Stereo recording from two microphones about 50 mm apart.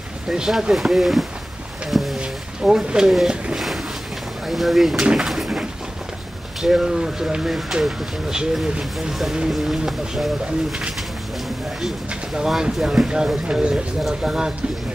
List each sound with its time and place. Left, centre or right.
0.3 s speech: centre
1.9 s a sound: centre
2.1 s a sound: centre
4.5 s speech: centre
5.0 s speech: centre
5.3 s bird: centre
6.6 s speech: centre
9.5 s speech: centre
12.4 s speech: centre